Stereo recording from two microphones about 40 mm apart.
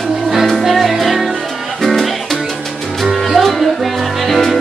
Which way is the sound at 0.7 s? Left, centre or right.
Centre.